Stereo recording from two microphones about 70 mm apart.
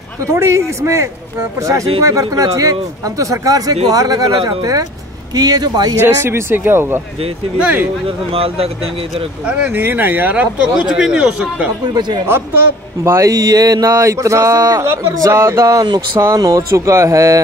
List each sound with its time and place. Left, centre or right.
0.3 s speech: right
5.9 s speech: right
7.5 s speech: centre
9.7 s speech: right
11.9 s speech: right
12.3 s speech: right
13.3 s speech: right
13.9 s speech: right
14.8 s speech: right